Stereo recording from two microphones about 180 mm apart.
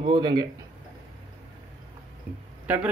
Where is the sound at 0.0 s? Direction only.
25° right (ahead or behind).